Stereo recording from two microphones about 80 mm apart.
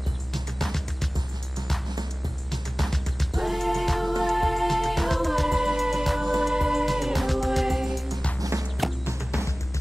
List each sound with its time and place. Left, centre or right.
0.3 s music: centre
2.5 s music: centre
8.4 s music: right